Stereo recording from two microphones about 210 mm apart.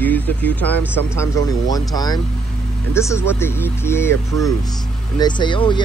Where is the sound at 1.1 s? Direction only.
15° left (ahead or behind).